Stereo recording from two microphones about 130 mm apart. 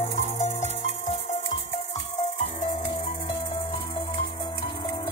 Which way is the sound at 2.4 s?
60° left (ahead or behind).